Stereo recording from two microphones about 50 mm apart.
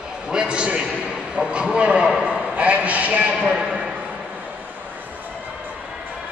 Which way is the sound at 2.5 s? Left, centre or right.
Right.